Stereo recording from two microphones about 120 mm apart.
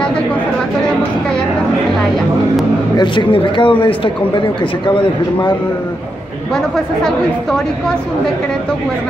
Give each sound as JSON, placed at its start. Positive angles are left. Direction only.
{"t": 3.0, "sound": "speech", "side_deg": 40}
{"t": 6.5, "sound": "a woman's voice", "side_deg": 5}